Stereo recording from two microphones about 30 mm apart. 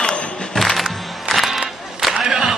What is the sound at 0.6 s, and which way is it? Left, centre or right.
Music, centre.